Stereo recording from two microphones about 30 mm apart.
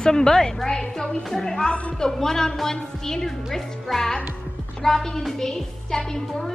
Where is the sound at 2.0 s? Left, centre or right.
Centre.